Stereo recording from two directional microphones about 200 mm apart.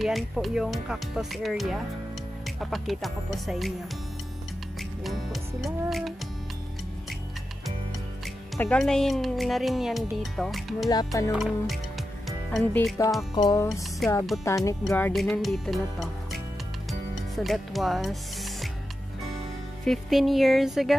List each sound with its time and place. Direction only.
0.0 s speech: centre (ahead or behind)
4.7 s music: centre (ahead or behind)
8.5 s speech: 5° left (ahead or behind)
13.3 s music: 20° left (ahead or behind)
14.0 s speech: centre (ahead or behind)
14.4 s speech: 15° left (ahead or behind); by 16.3 s centre (ahead or behind)
17.4 s speech: centre (ahead or behind)
19.8 s speech: centre (ahead or behind)